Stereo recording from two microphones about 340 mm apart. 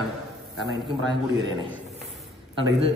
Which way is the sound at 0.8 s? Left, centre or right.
Centre.